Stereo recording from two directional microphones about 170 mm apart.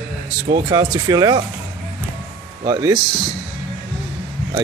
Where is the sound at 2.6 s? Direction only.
20° right (ahead or behind).